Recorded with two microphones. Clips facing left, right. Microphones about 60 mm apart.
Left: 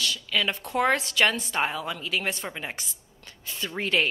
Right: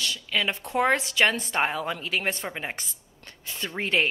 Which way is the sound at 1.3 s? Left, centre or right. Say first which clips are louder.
Right 2 dB; right.